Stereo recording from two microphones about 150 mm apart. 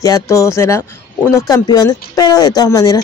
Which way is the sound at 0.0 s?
20° left (ahead or behind).